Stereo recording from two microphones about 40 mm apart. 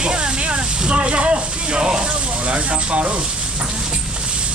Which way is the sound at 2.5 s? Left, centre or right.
Right.